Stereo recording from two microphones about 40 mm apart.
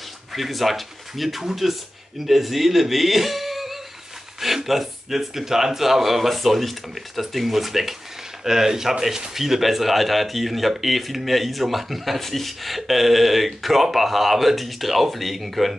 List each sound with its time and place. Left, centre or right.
0.3 s a man's voice: centre